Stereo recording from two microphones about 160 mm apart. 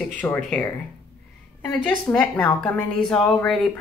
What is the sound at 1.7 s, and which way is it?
A woman's voice, 5° left (ahead or behind).